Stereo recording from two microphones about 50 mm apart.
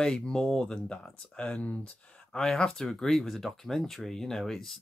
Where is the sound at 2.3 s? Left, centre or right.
Centre.